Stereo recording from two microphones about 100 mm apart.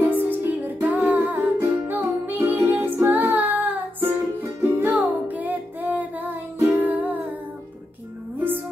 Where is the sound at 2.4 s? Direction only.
25° right (ahead or behind).